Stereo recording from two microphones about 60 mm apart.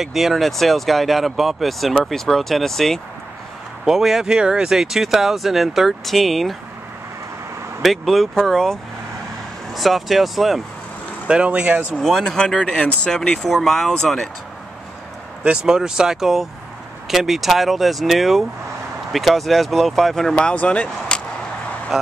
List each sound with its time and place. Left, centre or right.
0.0 s speech: centre
3.8 s speech: centre
7.8 s speech: centre
9.8 s speech: centre
11.2 s speech: centre
11.5 s speech: right
12.0 s speech: centre
12.4 s speech: centre
15.4 s speech: centre
20.5 s speech: left
21.9 s speech: centre